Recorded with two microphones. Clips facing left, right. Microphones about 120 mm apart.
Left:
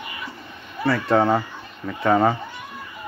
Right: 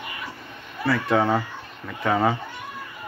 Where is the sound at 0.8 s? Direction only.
25° left (ahead or behind).